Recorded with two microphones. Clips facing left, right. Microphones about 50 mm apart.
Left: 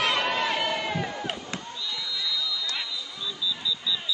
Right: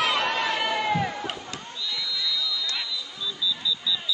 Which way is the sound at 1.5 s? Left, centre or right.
Centre.